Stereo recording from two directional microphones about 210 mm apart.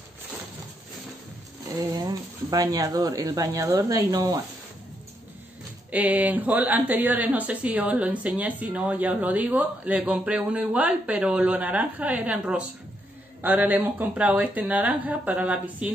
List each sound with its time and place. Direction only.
1.8 s speech: 20° right (ahead or behind)
5.9 s a man's voice: 5° right (ahead or behind)